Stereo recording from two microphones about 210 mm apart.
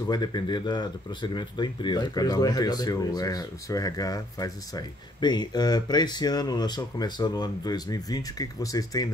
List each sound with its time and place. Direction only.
0.1 s speech: 20° left (ahead or behind)